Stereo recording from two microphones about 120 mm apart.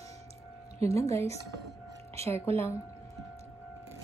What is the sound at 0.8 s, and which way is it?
Speech, 25° left (ahead or behind).